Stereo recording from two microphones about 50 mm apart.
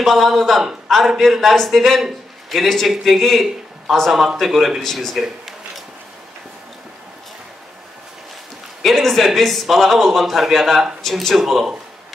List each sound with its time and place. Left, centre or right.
0.0 s speech: centre
4.8 s speech: centre
5.1 s speech: centre
8.8 s speech: centre